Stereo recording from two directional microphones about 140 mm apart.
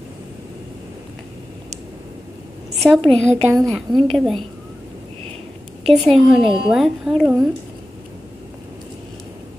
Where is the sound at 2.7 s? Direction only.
5° left (ahead or behind).